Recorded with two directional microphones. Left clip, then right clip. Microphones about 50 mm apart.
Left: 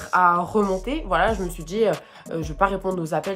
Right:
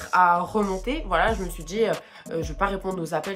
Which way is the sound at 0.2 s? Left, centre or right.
Left.